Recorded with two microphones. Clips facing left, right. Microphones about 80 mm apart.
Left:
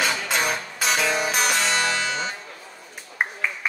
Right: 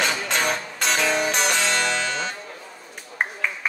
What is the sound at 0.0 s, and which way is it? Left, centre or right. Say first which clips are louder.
Music: even; centre.